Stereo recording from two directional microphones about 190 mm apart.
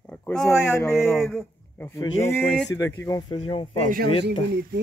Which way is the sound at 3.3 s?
30° left (ahead or behind).